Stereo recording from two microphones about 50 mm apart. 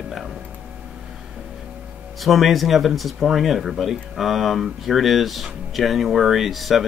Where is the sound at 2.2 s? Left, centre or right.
Centre.